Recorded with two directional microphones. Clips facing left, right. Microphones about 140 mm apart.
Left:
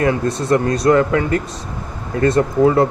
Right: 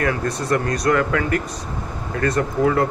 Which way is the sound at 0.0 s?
25° left (ahead or behind).